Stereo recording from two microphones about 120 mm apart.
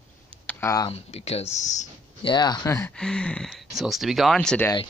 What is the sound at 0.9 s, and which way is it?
Speech, 60° left (ahead or behind).